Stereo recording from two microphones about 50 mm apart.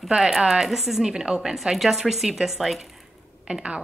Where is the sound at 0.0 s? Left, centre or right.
Centre.